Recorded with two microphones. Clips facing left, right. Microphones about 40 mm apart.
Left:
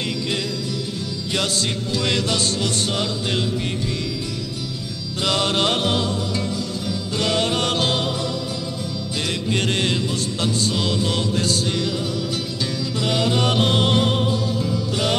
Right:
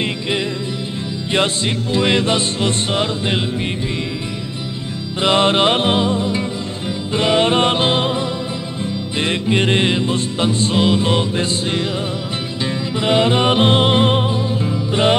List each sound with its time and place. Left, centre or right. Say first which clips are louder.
1.3 s music: right 5 dB; right
5.2 s music: right 6 dB; right
12.9 s music: right 6 dB; right